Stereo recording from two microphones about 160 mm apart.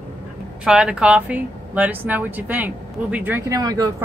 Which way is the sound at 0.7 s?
5° right (ahead or behind).